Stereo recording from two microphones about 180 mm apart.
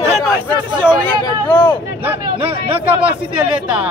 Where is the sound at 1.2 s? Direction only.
20° left (ahead or behind).